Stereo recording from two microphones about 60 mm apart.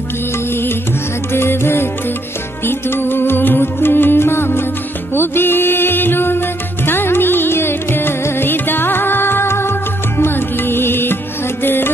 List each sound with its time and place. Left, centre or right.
1.3 s music: left